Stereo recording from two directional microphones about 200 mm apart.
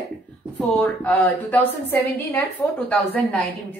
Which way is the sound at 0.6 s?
5° left (ahead or behind).